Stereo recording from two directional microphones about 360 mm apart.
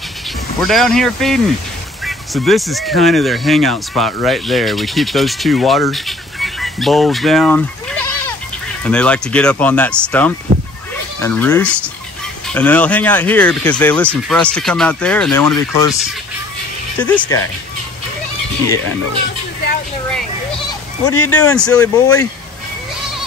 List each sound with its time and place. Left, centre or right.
0.6 s speech: centre
8.8 s speech: centre
17.0 s speech: centre
21.1 s speech: left
21.4 s speech: centre